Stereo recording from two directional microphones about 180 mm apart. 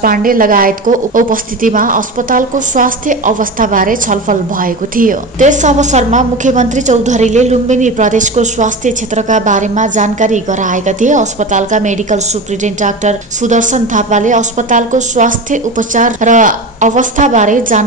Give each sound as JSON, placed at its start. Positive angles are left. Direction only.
{"t": 0.0, "sound": "a woman's voice", "side_deg": -50}